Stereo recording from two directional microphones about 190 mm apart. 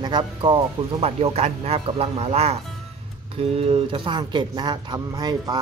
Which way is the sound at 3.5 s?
30° right (ahead or behind).